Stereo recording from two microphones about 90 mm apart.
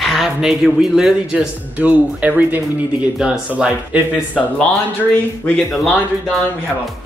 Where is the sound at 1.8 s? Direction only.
15° right (ahead or behind).